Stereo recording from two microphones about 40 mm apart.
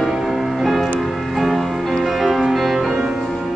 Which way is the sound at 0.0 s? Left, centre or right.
Centre.